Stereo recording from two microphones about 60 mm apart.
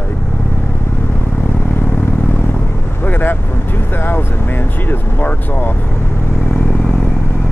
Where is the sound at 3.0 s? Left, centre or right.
Left.